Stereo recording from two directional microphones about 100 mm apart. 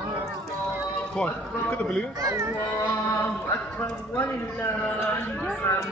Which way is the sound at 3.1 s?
20° left (ahead or behind).